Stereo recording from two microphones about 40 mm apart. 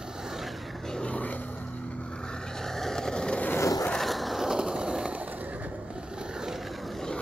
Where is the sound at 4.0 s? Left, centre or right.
Centre.